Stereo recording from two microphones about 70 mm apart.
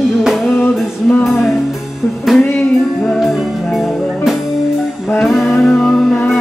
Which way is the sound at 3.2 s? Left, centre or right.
Centre.